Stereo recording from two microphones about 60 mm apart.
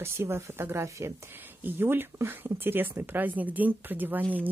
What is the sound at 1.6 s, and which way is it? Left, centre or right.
Speech, right.